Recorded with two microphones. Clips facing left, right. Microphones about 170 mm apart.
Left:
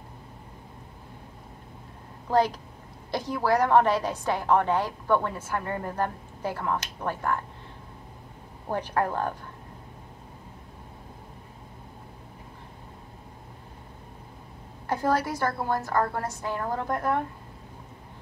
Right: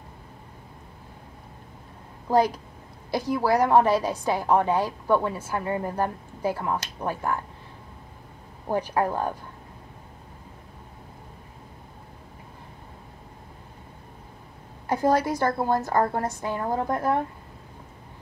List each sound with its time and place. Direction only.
2.2 s a woman's voice: 10° right (ahead or behind)
8.6 s a woman's voice: 15° right (ahead or behind)
14.9 s a woman's voice: 15° right (ahead or behind)